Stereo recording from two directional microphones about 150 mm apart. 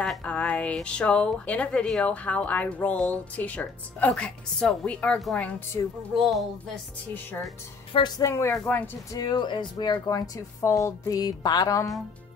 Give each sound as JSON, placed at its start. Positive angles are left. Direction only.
{"t": 0.0, "sound": "speech", "side_deg": 5}
{"t": 5.8, "sound": "speech", "side_deg": 20}
{"t": 6.1, "sound": "speech", "side_deg": 0}
{"t": 7.9, "sound": "a woman's voice", "side_deg": 30}
{"t": 8.3, "sound": "speech", "side_deg": 20}
{"t": 9.2, "sound": "speech", "side_deg": 30}